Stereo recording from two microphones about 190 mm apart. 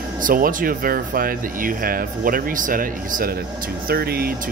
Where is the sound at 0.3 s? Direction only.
45° right (ahead or behind).